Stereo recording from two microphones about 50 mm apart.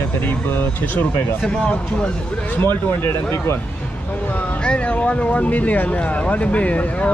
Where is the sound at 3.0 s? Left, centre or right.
Left.